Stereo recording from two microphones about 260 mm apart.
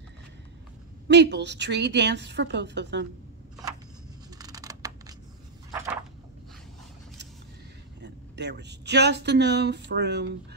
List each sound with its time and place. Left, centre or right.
1.0 s speech: right
4.4 s scissors: centre
8.0 s speech: right